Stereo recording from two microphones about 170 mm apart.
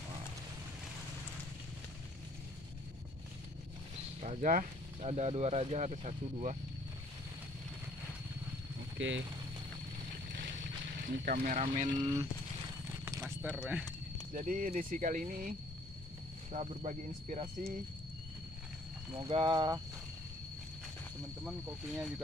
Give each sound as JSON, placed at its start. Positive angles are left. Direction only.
{"t": 4.2, "sound": "speech", "side_deg": -45}
{"t": 5.0, "sound": "speech", "side_deg": -40}
{"t": 8.9, "sound": "speech", "side_deg": -90}
{"t": 11.2, "sound": "speech", "side_deg": -55}
{"t": 12.0, "sound": "speech", "side_deg": -20}
{"t": 14.3, "sound": "speech", "side_deg": -50}
{"t": 16.5, "sound": "speech", "side_deg": -45}
{"t": 19.1, "sound": "speech", "side_deg": -30}
{"t": 21.5, "sound": "speech", "side_deg": -5}